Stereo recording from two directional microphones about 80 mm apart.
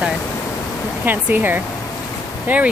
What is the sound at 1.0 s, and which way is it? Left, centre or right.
Speech, right.